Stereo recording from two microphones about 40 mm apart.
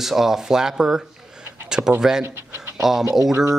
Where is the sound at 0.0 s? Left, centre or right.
Centre.